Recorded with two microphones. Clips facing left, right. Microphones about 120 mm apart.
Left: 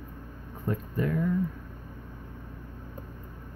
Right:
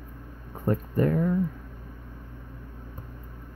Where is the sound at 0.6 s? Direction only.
45° right (ahead or behind).